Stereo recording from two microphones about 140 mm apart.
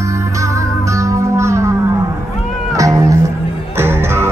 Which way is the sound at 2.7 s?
25° right (ahead or behind).